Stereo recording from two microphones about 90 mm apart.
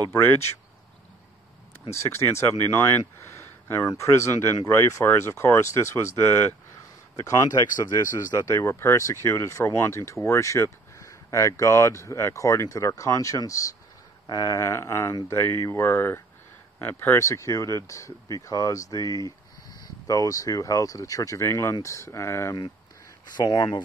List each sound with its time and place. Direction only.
0.1 s speech: 30° left (ahead or behind)
2.0 s speech: 30° left (ahead or behind)
23.3 s speech: 50° left (ahead or behind)